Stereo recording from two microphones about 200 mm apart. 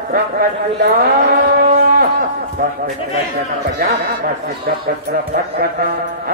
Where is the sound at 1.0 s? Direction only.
50° right (ahead or behind).